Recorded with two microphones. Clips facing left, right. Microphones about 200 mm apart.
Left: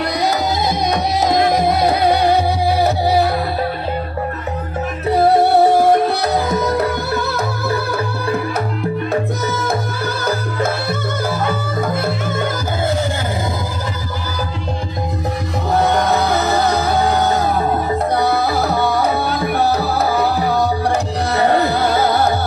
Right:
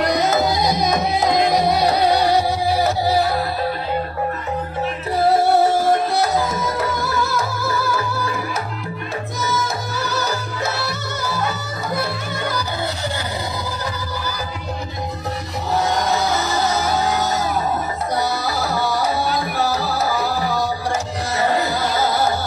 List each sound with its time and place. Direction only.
0.1 s music: 15° left (ahead or behind)
0.7 s music: 55° left (ahead or behind)
5.3 s music: 60° left (ahead or behind)
9.5 s music: 55° left (ahead or behind)
15.7 s music: 55° left (ahead or behind)